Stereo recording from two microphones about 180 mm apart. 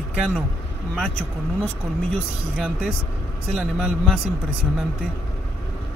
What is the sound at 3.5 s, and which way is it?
Speech, centre (ahead or behind).